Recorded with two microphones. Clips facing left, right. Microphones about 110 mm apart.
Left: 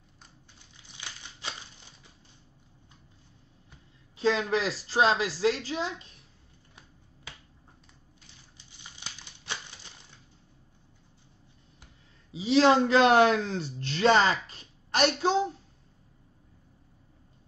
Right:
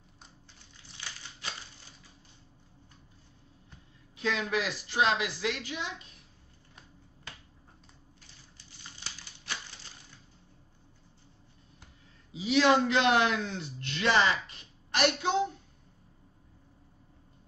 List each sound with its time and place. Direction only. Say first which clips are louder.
4.2 s a woman's voice: left 5 dB; 30° left (ahead or behind)
8.5 s crumpling: even; 20° left (ahead or behind)
12.3 s a man's voice: left 3 dB; 30° left (ahead or behind)